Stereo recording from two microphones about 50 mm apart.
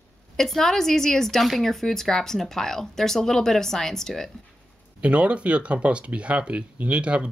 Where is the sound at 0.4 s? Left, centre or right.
Centre.